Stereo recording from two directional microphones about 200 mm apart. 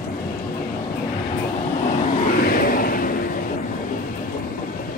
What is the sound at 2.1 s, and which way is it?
Vehicle, 45° left (ahead or behind).